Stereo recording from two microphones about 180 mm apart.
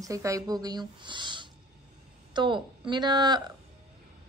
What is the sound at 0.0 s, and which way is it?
A woman's voice, 20° right (ahead or behind).